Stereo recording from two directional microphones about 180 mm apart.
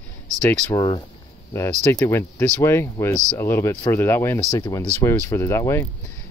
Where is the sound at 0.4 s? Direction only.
10° left (ahead or behind).